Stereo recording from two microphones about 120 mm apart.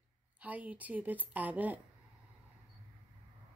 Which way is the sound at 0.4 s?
15° right (ahead or behind).